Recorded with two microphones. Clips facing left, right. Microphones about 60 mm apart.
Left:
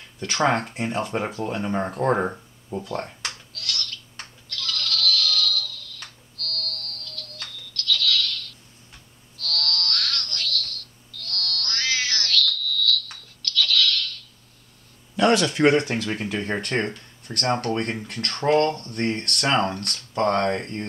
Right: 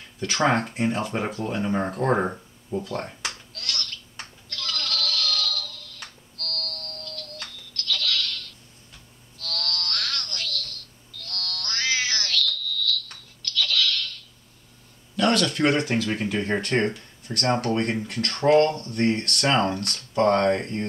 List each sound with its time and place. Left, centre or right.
0.0 s speech: centre
3.1 s bleat: centre
3.6 s a sound: centre
6.5 s music: centre
7.3 s telephone: centre
9.4 s a sound: centre
15.1 s speech: centre